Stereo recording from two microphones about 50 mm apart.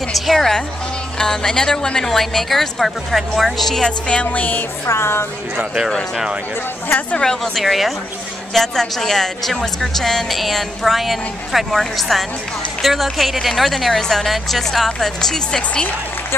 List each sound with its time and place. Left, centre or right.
0.1 s a woman's voice: centre
3.8 s speech: left
4.8 s speech: left
7.2 s a woman's voice: centre
7.6 s a woman's voice: centre
8.5 s a woman's voice: centre